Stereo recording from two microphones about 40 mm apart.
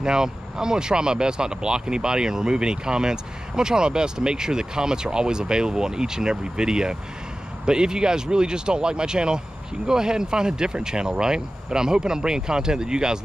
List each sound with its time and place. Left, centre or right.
0.0 s speech: centre